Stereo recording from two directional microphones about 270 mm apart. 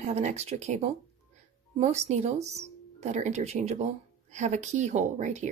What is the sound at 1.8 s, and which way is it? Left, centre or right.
Speech, right.